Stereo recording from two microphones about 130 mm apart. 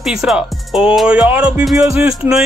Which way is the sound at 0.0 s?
Centre (ahead or behind).